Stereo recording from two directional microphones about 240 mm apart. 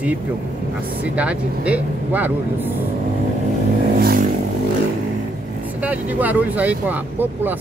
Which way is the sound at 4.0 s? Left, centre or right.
Right.